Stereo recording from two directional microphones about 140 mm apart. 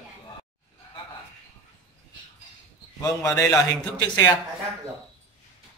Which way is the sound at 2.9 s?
25° left (ahead or behind).